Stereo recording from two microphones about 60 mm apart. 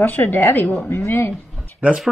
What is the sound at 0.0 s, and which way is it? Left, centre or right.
Speech, left.